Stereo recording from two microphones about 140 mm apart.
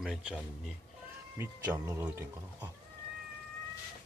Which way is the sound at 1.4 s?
20° right (ahead or behind).